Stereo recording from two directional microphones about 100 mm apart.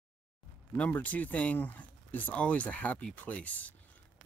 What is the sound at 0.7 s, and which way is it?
Speech, 15° left (ahead or behind).